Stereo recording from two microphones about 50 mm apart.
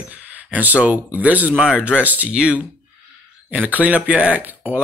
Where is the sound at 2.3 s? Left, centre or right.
Right.